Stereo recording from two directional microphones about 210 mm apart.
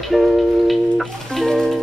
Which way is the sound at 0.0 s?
Centre (ahead or behind).